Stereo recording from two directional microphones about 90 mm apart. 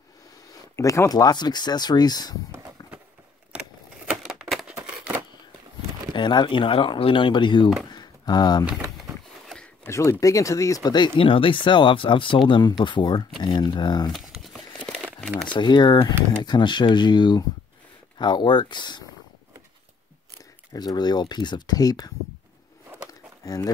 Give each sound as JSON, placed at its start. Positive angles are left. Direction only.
{"t": 0.7, "sound": "speech", "side_deg": 35}
{"t": 2.8, "sound": "run", "side_deg": 45}
{"t": 3.5, "sound": "a sound", "side_deg": -10}
{"t": 6.1, "sound": "speech", "side_deg": 60}
{"t": 7.9, "sound": "a sound", "side_deg": 50}
{"t": 9.8, "sound": "speech", "side_deg": 35}
{"t": 11.1, "sound": "speech", "side_deg": 80}
{"t": 14.1, "sound": "a sound", "side_deg": 0}
{"t": 15.4, "sound": "speech", "side_deg": 55}
{"t": 20.7, "sound": "speech", "side_deg": 50}
{"t": 23.4, "sound": "speech", "side_deg": 40}